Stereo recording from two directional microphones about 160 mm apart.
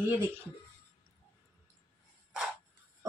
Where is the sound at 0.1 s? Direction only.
15° right (ahead or behind).